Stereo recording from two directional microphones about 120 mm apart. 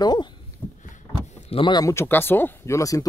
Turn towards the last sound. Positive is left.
turn(degrees=25)  # may be behind; listen again after turning